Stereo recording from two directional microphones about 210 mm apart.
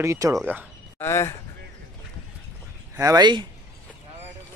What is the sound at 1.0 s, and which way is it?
Speech, 10° left (ahead or behind).